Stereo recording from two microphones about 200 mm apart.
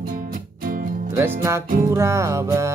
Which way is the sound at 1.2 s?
15° right (ahead or behind).